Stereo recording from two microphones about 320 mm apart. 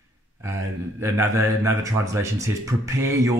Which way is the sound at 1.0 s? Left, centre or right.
Centre.